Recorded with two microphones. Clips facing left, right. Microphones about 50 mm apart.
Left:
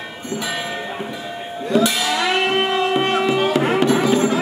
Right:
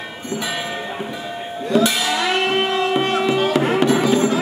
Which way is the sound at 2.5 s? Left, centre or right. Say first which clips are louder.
Even; centre.